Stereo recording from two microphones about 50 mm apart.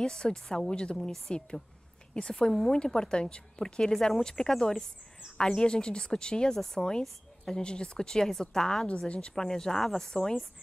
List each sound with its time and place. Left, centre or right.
0.0 s a woman's voice: centre
8.8 s a woman's voice: left